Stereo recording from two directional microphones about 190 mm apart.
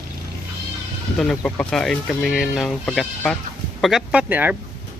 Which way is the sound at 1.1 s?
5° left (ahead or behind).